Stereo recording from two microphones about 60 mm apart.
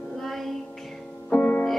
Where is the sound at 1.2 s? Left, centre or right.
Left.